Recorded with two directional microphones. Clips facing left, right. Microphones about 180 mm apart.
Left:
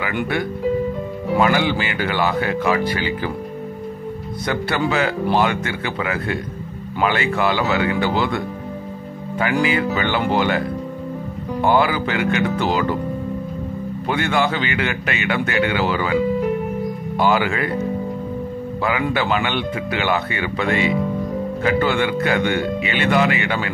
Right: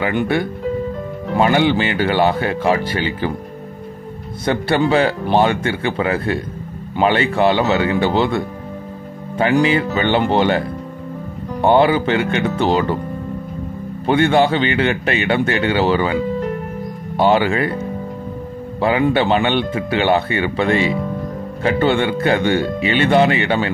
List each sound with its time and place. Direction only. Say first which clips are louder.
0.0 s speech: right 4 dB; 30° right (ahead or behind)
4.5 s speech: right 5 dB; 30° right (ahead or behind)
11.6 s speech: right 5 dB; 25° right (ahead or behind)
14.0 s speech: right 6 dB; 30° right (ahead or behind)
17.2 s speech: right 4 dB; 30° right (ahead or behind)
18.8 s speech: right 6 dB; 30° right (ahead or behind)